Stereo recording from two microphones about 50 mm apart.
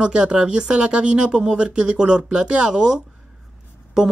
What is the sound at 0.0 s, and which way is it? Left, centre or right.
Speech, centre.